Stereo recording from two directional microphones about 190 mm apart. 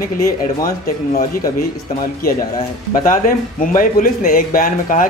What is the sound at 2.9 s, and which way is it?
Speech, 45° left (ahead or behind).